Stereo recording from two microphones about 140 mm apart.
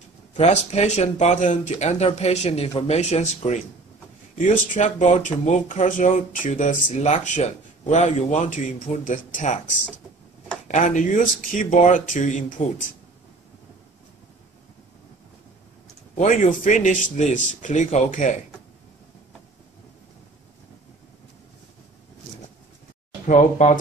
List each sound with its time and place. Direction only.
0.4 s speech: 50° left (ahead or behind)
10.7 s speech: 65° left (ahead or behind)
16.2 s speech: 65° left (ahead or behind)
23.2 s speech: 60° left (ahead or behind)